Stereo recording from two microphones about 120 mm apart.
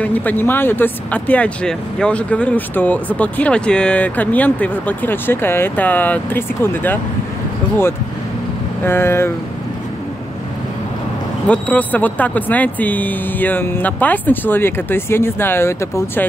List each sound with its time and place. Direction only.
0.0 s speech: 15° left (ahead or behind)
8.8 s vehicle: 20° left (ahead or behind)
11.4 s speech: 10° left (ahead or behind)